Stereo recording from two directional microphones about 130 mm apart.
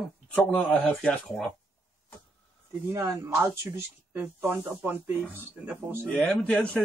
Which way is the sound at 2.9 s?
20° right (ahead or behind).